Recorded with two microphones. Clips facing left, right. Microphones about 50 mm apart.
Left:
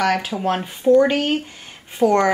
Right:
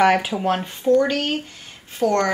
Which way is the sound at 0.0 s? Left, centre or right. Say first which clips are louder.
Right 3 dB; centre.